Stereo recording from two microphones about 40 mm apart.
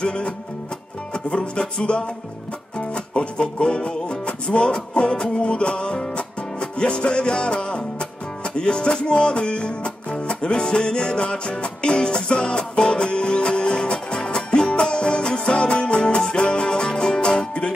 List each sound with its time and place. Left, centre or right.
0.0 s music: left
1.3 s music: left